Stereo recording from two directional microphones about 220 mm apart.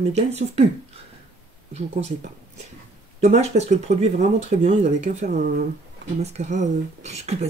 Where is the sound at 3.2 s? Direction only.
30° right (ahead or behind).